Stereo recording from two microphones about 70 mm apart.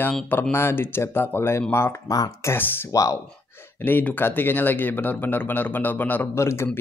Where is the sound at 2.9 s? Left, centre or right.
Left.